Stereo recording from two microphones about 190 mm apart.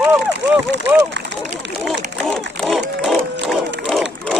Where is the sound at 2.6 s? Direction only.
Centre (ahead or behind).